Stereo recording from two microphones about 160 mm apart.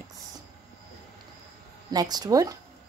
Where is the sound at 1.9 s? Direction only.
25° right (ahead or behind).